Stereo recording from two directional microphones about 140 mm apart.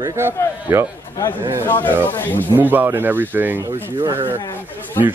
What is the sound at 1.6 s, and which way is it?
Speech, 15° left (ahead or behind).